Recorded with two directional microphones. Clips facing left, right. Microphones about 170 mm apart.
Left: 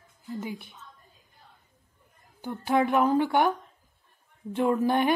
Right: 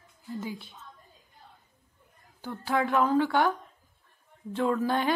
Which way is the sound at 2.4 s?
15° left (ahead or behind).